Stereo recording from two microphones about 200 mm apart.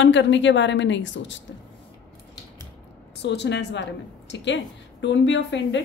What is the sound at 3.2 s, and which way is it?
A woman's voice, 60° left (ahead or behind).